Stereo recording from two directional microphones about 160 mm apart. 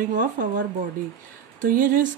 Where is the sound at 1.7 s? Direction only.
60° right (ahead or behind).